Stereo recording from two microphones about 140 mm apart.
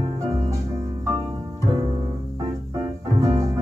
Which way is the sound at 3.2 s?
25° right (ahead or behind).